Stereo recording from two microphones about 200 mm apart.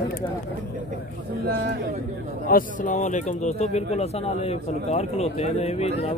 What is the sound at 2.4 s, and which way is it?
Speech, 40° left (ahead or behind).